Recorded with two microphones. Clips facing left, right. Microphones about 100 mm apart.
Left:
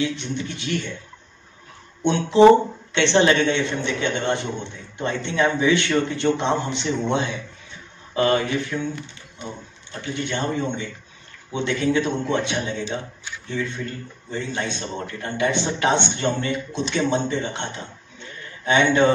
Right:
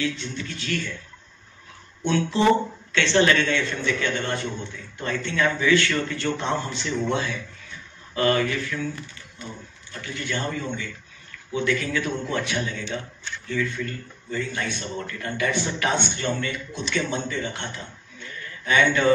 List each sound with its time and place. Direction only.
0.0 s a man's voice: 20° left (ahead or behind)
2.0 s a man's voice: 20° left (ahead or behind)